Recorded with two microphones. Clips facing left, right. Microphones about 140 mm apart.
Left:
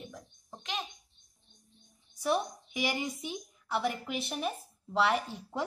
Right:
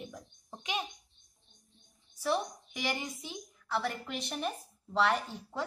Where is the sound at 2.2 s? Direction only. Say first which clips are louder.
Left 2 dB; 10° left (ahead or behind).